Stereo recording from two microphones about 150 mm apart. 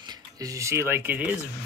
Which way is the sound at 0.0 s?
25° right (ahead or behind).